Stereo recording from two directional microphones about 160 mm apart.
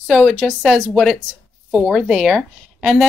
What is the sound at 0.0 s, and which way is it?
A woman's voice, centre (ahead or behind).